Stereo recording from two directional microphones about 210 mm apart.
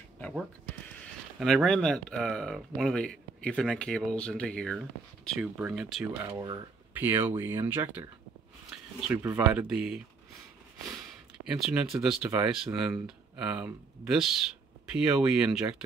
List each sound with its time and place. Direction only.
1.4 s speech: centre (ahead or behind)
6.2 s speech: 15° right (ahead or behind)
11.3 s speech: 5° right (ahead or behind)